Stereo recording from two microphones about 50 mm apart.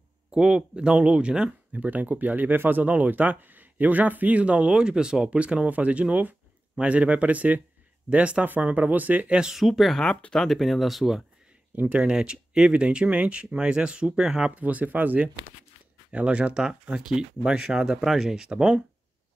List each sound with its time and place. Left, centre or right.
0.3 s speech: centre
1.7 s speech: right
9.5 s speech: centre
11.7 s speech: right
12.1 s speech: centre
14.5 s speech: right
16.1 s speech: right